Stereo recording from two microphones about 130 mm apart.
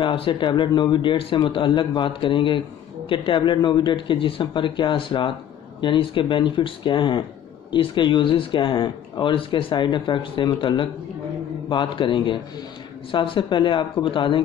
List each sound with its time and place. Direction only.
0.0 s speech: 40° left (ahead or behind)